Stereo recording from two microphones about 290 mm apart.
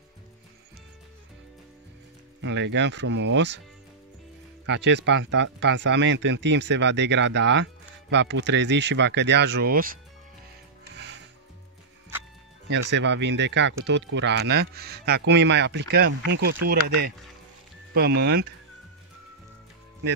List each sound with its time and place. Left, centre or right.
2.4 s speech: right
4.6 s speech: right
12.9 s speech: right
17.9 s speech: right